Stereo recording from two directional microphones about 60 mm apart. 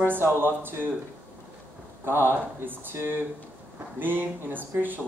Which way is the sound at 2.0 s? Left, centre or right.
Right.